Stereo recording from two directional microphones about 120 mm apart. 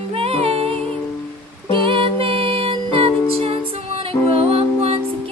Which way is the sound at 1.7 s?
45° right (ahead or behind).